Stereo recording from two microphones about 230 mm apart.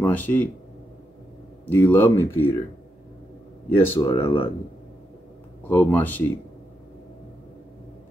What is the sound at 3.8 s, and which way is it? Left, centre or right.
Speech, centre.